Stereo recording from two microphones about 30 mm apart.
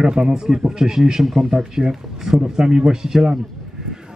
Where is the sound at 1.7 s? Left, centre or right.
Centre.